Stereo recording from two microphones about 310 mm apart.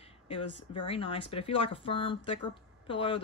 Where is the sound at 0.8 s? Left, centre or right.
Centre.